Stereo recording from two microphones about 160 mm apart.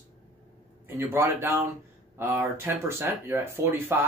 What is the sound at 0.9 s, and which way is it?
Speech, 15° right (ahead or behind).